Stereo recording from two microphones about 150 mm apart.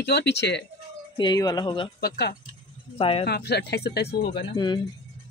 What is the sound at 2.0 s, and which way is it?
Speech, 90° left.